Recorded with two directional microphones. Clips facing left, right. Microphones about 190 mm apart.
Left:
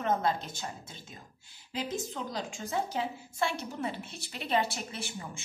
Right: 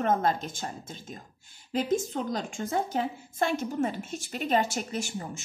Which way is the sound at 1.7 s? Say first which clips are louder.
Right 8 dB; 50° right (ahead or behind).